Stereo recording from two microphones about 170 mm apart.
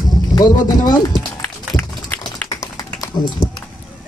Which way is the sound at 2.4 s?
20° left (ahead or behind).